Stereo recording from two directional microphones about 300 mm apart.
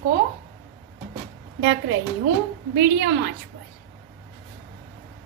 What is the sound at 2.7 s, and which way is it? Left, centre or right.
Speech, right.